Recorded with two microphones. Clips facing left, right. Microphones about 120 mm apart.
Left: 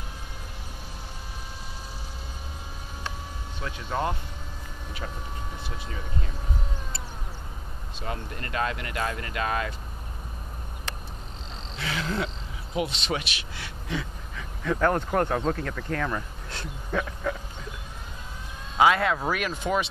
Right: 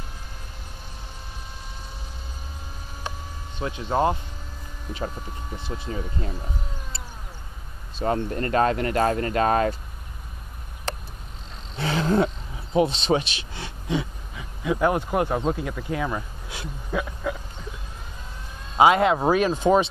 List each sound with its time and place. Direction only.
3.5 s speech: 25° right (ahead or behind)
5.6 s speech: 35° right (ahead or behind)
8.0 s speech: 40° right (ahead or behind)
10.9 s a sound: 35° right (ahead or behind)
11.7 s roaring cats: 35° right (ahead or behind)
12.7 s speech: 35° right (ahead or behind); by 17.4 s 5° right (ahead or behind)
18.8 s speech: 25° right (ahead or behind)